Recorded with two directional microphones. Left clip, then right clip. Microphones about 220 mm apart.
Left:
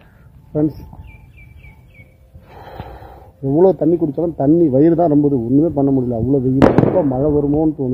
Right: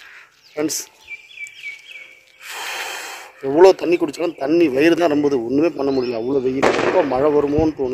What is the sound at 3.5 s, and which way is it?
A man's voice, 25° right (ahead or behind).